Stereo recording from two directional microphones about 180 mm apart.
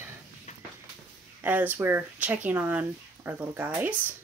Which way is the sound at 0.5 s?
40° left (ahead or behind).